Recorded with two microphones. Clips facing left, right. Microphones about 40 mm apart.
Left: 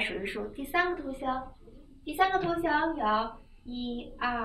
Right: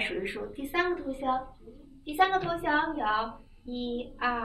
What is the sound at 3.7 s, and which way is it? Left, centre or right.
Child singing, right.